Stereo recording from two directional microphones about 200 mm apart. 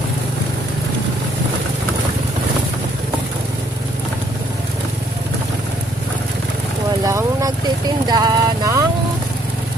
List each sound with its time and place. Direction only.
7.1 s vehicle: 15° right (ahead or behind)